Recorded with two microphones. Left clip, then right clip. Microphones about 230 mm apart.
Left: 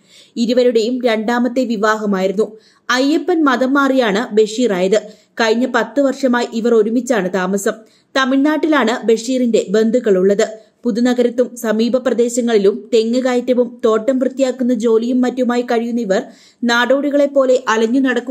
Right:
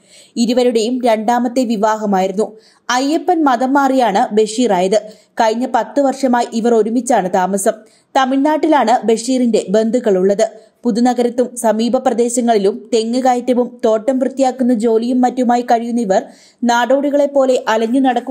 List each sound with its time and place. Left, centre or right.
0.4 s a woman's voice: centre